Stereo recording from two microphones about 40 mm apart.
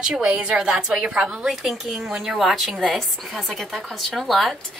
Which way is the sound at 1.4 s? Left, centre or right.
Centre.